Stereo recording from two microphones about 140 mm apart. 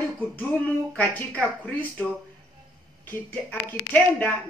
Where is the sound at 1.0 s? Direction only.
10° left (ahead or behind).